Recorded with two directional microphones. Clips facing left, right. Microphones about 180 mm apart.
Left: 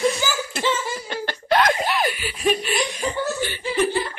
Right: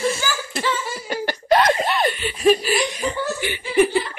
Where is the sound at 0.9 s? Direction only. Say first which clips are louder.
Right 3 dB; 10° right (ahead or behind).